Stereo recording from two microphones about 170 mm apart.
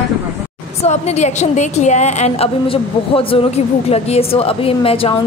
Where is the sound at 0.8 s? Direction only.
40° left (ahead or behind).